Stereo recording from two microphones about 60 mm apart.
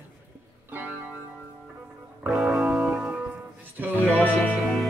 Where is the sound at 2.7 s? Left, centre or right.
Right.